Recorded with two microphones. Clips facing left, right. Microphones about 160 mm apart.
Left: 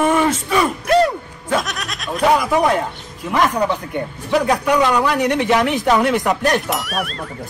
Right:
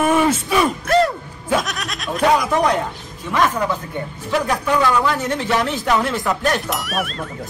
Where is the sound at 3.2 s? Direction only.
20° left (ahead or behind).